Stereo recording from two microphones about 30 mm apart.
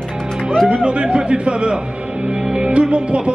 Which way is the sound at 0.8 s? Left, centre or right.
Right.